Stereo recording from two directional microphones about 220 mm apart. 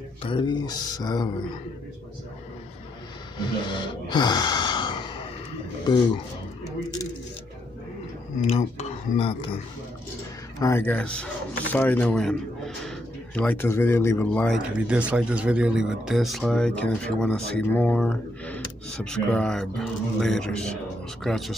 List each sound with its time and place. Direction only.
0.2 s speech: 20° left (ahead or behind)
3.3 s gasp: 20° left (ahead or behind)
8.4 s speech: 30° left (ahead or behind)
10.6 s a man's voice: 10° left (ahead or behind)
14.8 s speech: 5° right (ahead or behind)